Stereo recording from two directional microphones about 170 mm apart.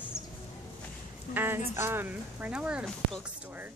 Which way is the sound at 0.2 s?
15° left (ahead or behind).